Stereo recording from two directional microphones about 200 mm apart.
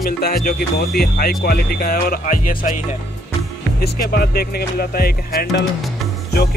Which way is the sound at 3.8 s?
50° left (ahead or behind).